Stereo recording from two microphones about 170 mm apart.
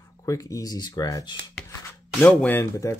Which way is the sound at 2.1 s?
10° left (ahead or behind).